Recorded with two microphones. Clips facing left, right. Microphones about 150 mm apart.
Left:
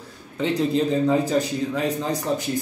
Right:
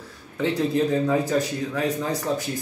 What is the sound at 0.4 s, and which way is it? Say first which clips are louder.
A man's voice: left 1 dB; 20° left (ahead or behind).